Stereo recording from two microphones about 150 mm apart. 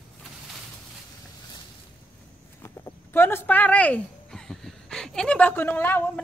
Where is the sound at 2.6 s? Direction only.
15° left (ahead or behind).